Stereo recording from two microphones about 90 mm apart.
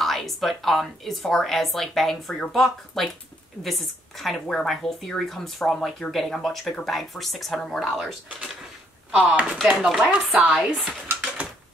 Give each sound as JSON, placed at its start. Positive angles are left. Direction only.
{"t": 0.0, "sound": "speech", "side_deg": 0}
{"t": 9.1, "sound": "speech", "side_deg": -15}
{"t": 10.5, "sound": "speech", "side_deg": -5}